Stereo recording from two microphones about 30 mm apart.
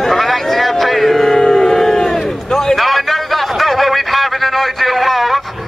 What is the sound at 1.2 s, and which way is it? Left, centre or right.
Crowd, centre.